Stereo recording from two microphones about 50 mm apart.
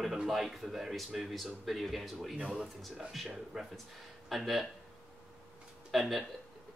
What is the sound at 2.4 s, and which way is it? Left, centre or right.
Speech, centre.